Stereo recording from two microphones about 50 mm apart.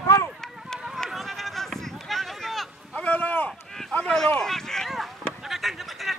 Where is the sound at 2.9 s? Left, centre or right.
Left.